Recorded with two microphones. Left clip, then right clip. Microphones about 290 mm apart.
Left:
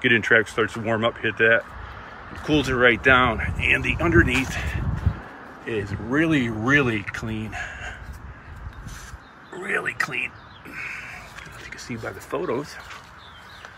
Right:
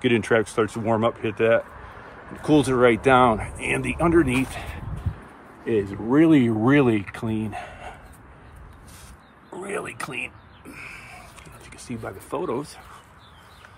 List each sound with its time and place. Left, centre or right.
0.0 s speech: centre
9.6 s a sound: centre
11.9 s speech: centre